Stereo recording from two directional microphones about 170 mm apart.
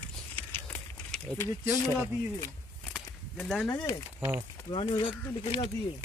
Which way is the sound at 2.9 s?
Centre (ahead or behind).